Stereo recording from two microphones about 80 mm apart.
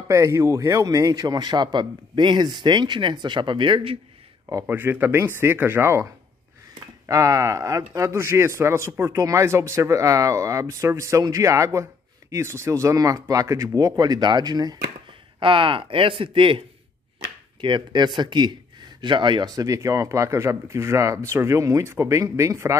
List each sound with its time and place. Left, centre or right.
0.1 s a man's voice: right
4.6 s speech: right
7.1 s speech: right
12.9 s speech: right
15.0 s speech: right
17.6 s speech: right
19.5 s speech: right